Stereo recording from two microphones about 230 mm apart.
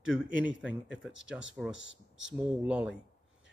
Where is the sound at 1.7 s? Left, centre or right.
Left.